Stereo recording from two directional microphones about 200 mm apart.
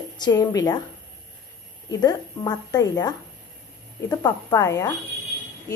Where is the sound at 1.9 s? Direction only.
20° left (ahead or behind).